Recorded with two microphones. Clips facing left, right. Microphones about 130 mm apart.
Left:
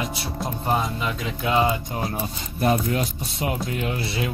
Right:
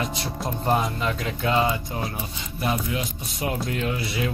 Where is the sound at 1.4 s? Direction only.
15° left (ahead or behind).